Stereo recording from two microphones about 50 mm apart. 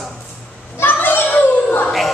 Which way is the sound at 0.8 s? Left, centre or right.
Left.